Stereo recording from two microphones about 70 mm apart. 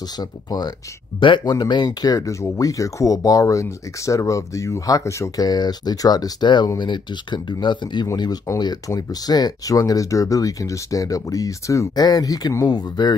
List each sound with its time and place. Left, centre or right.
0.2 s speech: left
1.4 s speech: left
5.3 s speech: left
8.5 s speech: left
8.8 s speech: left
11.9 s speech: left
12.6 s speech: left